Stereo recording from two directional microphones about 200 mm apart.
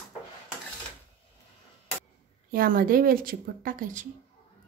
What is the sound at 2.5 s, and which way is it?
Speech, 45° right (ahead or behind).